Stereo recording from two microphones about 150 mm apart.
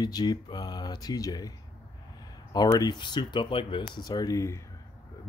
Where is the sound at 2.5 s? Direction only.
25° left (ahead or behind).